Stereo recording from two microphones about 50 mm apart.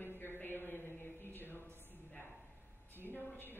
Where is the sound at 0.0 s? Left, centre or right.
Left.